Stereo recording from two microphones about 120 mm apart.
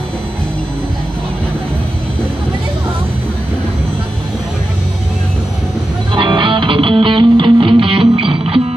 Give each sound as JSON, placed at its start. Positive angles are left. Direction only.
{"t": 6.1, "sound": "music", "side_deg": -45}